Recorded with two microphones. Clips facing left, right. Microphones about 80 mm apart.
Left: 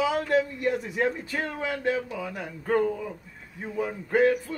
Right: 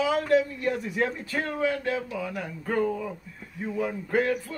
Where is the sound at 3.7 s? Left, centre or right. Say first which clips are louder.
Left 2 dB; centre.